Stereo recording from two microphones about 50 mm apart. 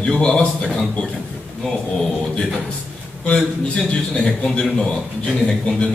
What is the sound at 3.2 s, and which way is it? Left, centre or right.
A man's voice, left.